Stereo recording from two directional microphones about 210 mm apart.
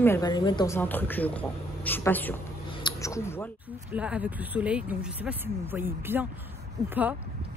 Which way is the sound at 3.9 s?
5° right (ahead or behind).